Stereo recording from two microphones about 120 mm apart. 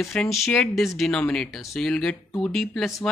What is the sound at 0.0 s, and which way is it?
Speech, 5° left (ahead or behind).